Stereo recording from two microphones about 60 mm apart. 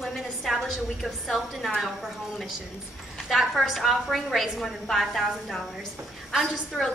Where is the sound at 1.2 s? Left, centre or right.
Centre.